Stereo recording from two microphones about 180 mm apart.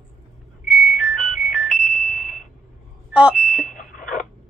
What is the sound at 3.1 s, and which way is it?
Smoke detector, 5° right (ahead or behind).